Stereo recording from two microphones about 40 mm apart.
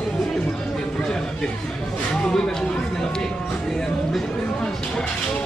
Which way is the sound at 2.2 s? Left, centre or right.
Centre.